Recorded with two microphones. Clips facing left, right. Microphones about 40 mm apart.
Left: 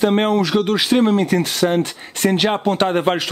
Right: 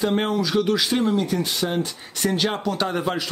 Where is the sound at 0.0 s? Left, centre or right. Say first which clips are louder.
Left 6 dB; left.